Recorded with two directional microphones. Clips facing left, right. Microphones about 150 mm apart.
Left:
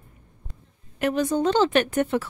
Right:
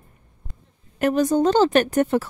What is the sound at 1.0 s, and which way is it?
Speech, 40° right (ahead or behind).